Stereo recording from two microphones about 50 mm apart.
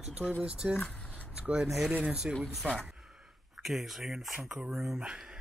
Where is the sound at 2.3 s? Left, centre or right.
Right.